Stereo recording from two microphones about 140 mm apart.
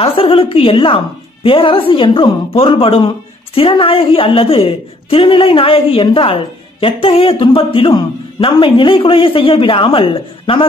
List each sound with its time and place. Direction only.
0.0 s a woman's voice: 40° left (ahead or behind)